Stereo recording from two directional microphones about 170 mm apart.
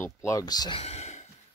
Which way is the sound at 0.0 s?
15° left (ahead or behind).